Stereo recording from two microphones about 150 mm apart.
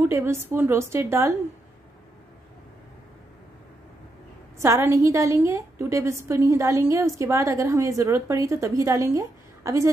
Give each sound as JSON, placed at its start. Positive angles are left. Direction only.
{"t": 0.0, "sound": "a woman's voice", "side_deg": -15}
{"t": 4.6, "sound": "a woman's voice", "side_deg": -20}